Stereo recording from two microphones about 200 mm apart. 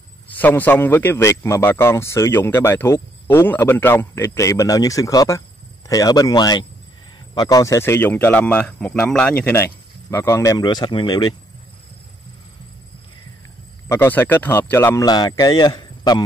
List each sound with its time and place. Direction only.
0.4 s a man's voice: 10° left (ahead or behind)
13.8 s a man's voice: 10° left (ahead or behind)